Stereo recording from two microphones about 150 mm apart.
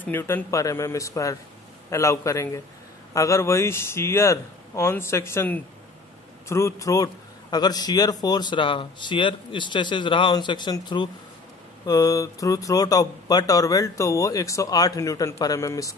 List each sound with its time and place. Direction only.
0.0 s a man's voice: 15° left (ahead or behind)